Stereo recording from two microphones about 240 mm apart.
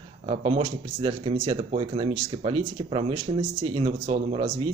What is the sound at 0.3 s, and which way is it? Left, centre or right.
Speech, right.